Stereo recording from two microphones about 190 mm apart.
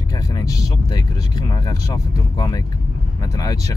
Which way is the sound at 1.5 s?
20° left (ahead or behind).